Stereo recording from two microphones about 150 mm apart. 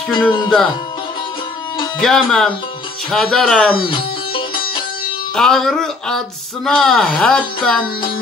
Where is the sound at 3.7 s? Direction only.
35° left (ahead or behind).